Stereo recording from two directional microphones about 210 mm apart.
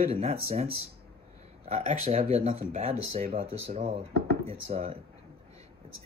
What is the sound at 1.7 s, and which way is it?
Speech, 35° right (ahead or behind).